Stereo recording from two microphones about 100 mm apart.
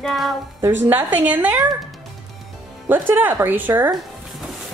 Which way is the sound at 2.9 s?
20° right (ahead or behind).